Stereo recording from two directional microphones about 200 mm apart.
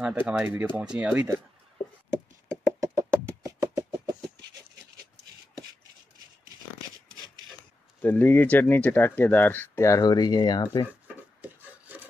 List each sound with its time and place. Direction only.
0.0 s speech: 10° right (ahead or behind)
2.4 s a sound: 10° right (ahead or behind)
8.0 s speech: 10° left (ahead or behind)